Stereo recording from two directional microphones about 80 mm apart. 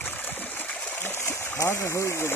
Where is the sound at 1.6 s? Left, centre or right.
Left.